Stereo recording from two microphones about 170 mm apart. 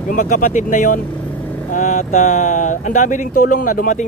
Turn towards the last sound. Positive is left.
turn(degrees=50)  # may be behind; listen again after turning